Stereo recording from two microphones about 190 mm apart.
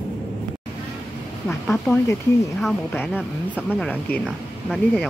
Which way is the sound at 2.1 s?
15° left (ahead or behind).